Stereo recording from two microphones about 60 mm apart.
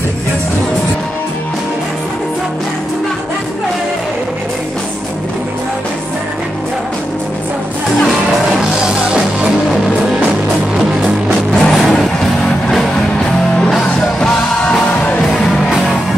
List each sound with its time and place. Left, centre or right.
8.5 s music: centre
11.6 s music: centre
13.6 s music: centre
14.6 s music: left
15.3 s music: centre